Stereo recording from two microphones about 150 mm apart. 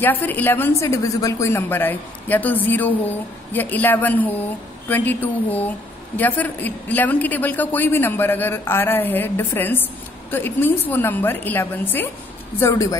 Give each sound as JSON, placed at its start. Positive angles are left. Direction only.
{"t": 0.0, "sound": "a woman's voice", "side_deg": 10}